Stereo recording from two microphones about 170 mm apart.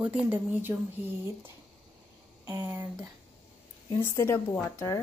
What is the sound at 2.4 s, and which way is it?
Speech, 20° right (ahead or behind).